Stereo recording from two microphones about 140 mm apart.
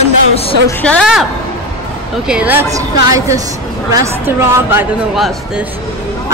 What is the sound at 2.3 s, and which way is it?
Speech, 10° right (ahead or behind).